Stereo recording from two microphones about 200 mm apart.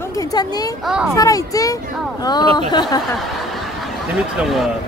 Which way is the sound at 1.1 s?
15° left (ahead or behind).